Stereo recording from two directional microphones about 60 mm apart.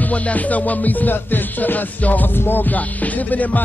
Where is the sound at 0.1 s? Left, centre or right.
Left.